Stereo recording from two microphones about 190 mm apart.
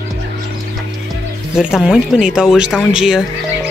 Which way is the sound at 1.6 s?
5° right (ahead or behind).